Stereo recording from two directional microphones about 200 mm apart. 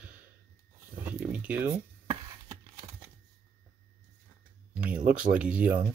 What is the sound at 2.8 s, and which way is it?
Computer keyboard, 30° right (ahead or behind).